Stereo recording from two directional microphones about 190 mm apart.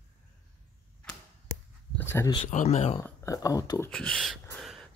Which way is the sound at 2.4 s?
40° left (ahead or behind).